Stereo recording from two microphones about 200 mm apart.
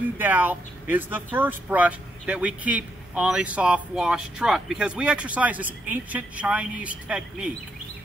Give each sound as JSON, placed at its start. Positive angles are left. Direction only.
{"t": 0.2, "sound": "speech", "side_deg": -10}